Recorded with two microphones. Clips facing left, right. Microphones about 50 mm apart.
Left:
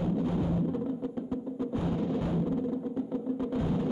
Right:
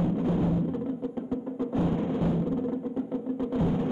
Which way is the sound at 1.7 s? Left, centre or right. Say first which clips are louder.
Right 4 dB; right.